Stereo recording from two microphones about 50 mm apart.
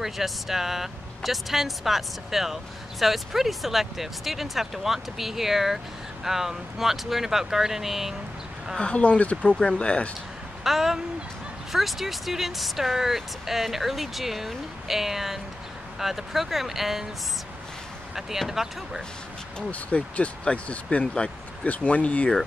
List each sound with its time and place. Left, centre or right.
0.0 s speech: centre
8.7 s speech: left
10.6 s speech: centre
18.1 s speech: centre
19.7 s speech: left